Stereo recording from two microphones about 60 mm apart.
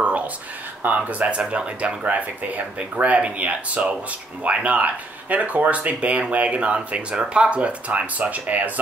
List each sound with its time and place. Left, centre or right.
0.8 s speech: right